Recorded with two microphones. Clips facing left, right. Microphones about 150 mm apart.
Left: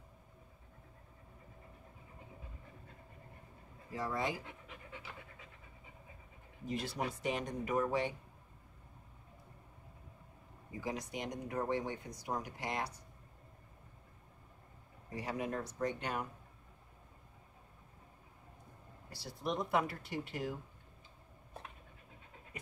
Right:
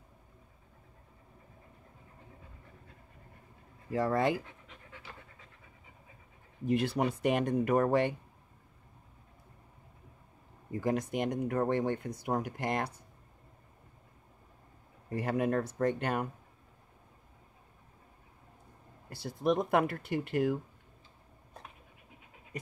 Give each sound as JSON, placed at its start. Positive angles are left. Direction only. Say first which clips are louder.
{"t": 3.9, "sound": "speech", "louder": "right 9 dB", "side_deg": -60}
{"t": 6.7, "sound": "speech", "louder": "right 9 dB", "side_deg": -65}
{"t": 10.7, "sound": "speech", "louder": "right 9 dB", "side_deg": -55}
{"t": 15.0, "sound": "speech", "louder": "right 8 dB", "side_deg": -55}
{"t": 19.0, "sound": "speech", "louder": "right 10 dB", "side_deg": -55}